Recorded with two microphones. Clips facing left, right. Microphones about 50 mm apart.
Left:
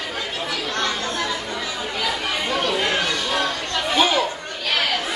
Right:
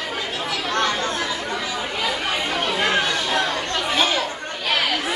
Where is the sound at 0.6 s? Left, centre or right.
Right.